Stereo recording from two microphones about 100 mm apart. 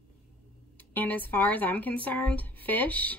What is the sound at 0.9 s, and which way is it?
Speech, 20° left (ahead or behind).